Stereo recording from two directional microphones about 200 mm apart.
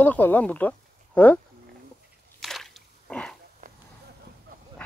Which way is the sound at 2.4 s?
Centre (ahead or behind).